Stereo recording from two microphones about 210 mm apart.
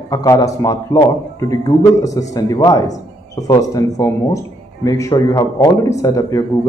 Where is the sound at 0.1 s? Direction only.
15° left (ahead or behind).